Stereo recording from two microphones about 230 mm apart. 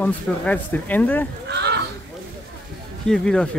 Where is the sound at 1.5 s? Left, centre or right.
Right.